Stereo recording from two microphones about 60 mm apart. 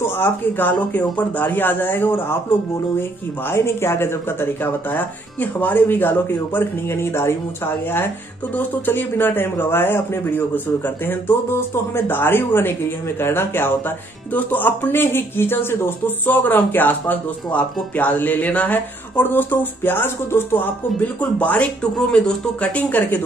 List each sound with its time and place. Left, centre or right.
0.0 s speech: left
4.9 s speech: left
6.9 s speech: left
21.9 s speech: centre
22.6 s speech: left